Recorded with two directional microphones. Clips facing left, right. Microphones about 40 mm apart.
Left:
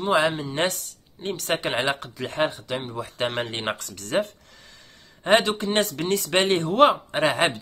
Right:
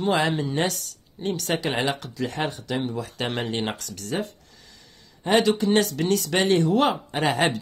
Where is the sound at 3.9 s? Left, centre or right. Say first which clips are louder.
Left 4 dB; left.